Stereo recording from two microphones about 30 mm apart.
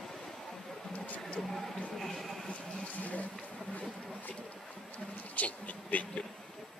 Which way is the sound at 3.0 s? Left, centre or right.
Left.